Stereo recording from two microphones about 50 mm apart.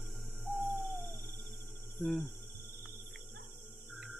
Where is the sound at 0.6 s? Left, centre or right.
Centre.